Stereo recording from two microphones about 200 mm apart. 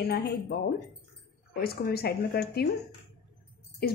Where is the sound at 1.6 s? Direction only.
50° left (ahead or behind).